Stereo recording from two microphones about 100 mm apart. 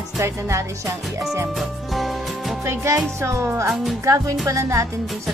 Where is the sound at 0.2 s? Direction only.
30° right (ahead or behind).